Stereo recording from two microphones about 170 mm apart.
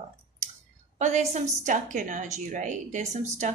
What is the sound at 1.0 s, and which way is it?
Speech, 40° right (ahead or behind).